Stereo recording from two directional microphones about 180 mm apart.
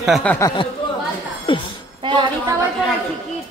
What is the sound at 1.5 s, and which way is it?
Speech, 30° left (ahead or behind).